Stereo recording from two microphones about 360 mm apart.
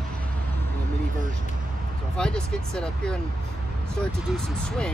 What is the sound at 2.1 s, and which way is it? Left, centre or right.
Speech, centre.